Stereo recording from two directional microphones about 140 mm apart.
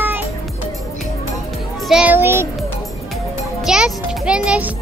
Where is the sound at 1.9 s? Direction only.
10° right (ahead or behind).